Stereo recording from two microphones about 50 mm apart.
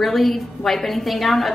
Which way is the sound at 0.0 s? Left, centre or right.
Centre.